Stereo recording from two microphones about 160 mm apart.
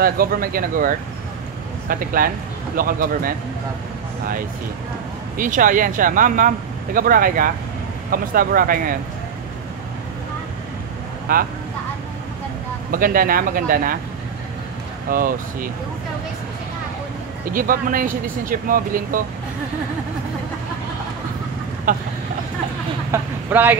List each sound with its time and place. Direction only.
0.0 s speech: 65° right (ahead or behind)
5.4 s speech: 60° right (ahead or behind)
11.3 s speech: 65° right (ahead or behind)
12.9 s speech: 65° right (ahead or behind)
15.0 s speech: 60° right (ahead or behind)
17.5 s speech: 60° right (ahead or behind)
21.9 s speech: 55° right (ahead or behind)
23.1 s speech: 10° right (ahead or behind)